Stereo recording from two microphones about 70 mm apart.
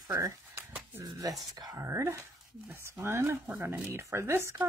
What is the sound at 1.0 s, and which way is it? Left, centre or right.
Speech, right.